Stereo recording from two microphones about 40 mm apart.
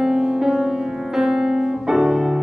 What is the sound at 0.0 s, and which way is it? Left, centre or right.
Music, centre.